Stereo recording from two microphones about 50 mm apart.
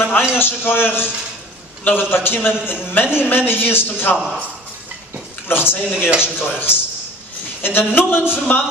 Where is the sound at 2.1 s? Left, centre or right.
Left.